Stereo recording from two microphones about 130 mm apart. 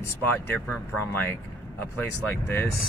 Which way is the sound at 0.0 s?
15° left (ahead or behind).